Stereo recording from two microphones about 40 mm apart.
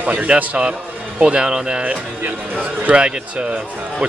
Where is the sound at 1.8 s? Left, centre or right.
Right.